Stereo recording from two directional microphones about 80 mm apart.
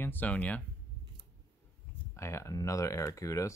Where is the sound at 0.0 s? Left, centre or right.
Left.